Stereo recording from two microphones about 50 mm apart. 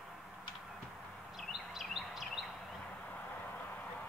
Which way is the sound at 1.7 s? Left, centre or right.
Centre.